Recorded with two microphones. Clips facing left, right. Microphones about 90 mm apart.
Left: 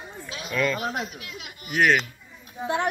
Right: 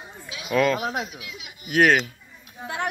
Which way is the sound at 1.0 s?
50° left (ahead or behind).